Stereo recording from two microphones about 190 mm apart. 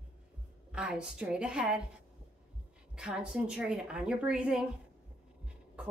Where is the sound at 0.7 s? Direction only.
5° right (ahead or behind).